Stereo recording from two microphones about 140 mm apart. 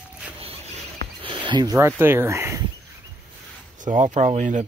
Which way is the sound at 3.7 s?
65° right (ahead or behind).